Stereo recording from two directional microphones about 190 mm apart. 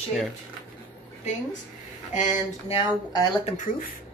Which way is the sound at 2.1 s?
40° left (ahead or behind).